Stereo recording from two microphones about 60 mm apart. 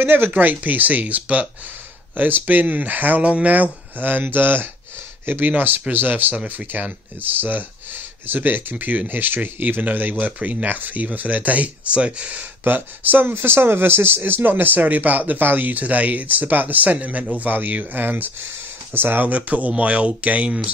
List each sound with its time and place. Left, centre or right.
0.0 s speech: right
6.7 s speech: right
12.6 s speech: right